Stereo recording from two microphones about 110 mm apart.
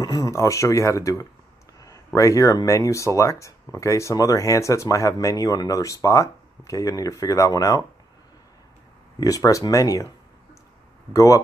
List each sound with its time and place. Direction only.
0.0 s speech: 35° left (ahead or behind)
9.2 s speech: 30° left (ahead or behind)